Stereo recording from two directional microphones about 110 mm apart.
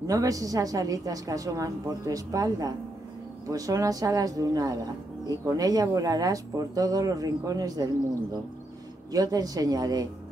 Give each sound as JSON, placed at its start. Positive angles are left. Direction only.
{"t": 0.0, "sound": "a woman's voice", "side_deg": -30}
{"t": 9.1, "sound": "a woman's voice", "side_deg": -35}